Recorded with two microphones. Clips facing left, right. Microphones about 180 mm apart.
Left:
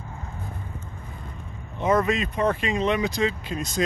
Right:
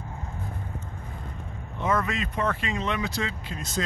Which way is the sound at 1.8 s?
20° left (ahead or behind).